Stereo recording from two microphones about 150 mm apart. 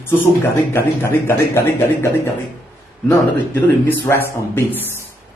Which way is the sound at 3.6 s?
15° left (ahead or behind).